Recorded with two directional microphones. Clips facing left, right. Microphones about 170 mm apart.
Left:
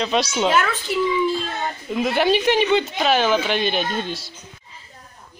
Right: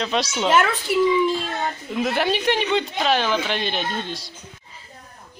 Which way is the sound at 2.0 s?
Centre (ahead or behind).